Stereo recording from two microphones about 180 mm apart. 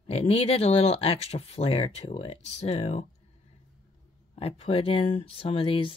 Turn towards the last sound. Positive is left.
turn(degrees=30)  # may be behind; listen again after turning